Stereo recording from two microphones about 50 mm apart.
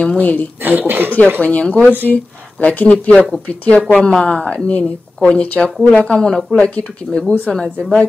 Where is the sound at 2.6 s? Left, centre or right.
Left.